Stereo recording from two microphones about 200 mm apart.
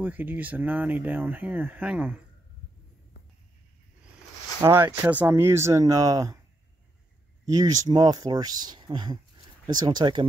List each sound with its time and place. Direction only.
0.0 s speech: 10° right (ahead or behind)
4.6 s speech: 15° right (ahead or behind)
7.4 s speech: 15° right (ahead or behind)